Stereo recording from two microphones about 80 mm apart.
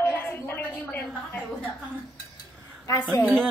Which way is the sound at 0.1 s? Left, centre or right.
Left.